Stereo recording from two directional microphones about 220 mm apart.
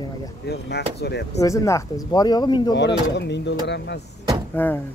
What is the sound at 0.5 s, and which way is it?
Speech, 50° left (ahead or behind).